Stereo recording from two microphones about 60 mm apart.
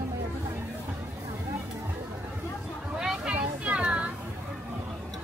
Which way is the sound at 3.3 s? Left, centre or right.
Right.